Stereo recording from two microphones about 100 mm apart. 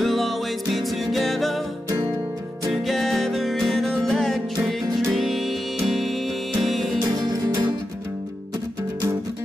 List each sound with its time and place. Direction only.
0.0 s music: centre (ahead or behind)
2.7 s music: centre (ahead or behind)
7.2 s music: 45° right (ahead or behind)